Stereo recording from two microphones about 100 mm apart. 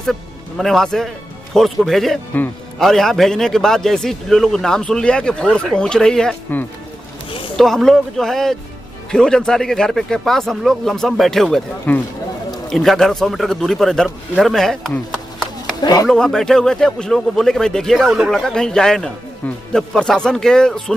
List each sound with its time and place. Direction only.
0.0 s a man's voice: centre (ahead or behind)
7.2 s a sound: 60° left (ahead or behind)
7.5 s a man's voice: 5° left (ahead or behind)
11.9 s speech: 15° left (ahead or behind)
12.6 s a man's voice: 5° left (ahead or behind)
15.8 s speech: 40° left (ahead or behind)
16.1 s a man's voice: 5° left (ahead or behind)